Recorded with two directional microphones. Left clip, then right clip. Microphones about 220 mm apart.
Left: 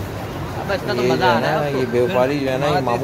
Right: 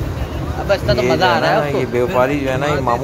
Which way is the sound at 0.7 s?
35° right (ahead or behind).